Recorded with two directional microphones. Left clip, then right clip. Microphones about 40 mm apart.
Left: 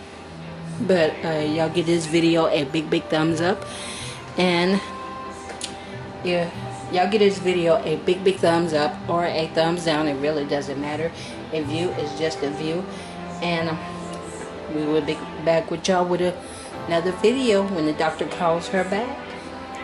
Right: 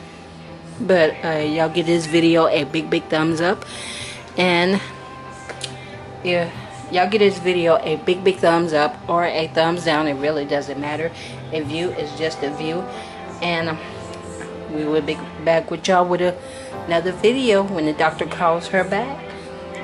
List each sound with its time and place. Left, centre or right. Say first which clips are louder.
0.8 s a woman's voice: right 4 dB; right
6.2 s a woman's voice: right 3 dB; right
11.5 s a woman's voice: right 2 dB; centre
14.9 s a woman's voice: right 2 dB; centre